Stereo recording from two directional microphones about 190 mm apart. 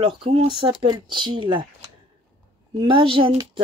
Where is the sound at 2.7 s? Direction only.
25° right (ahead or behind).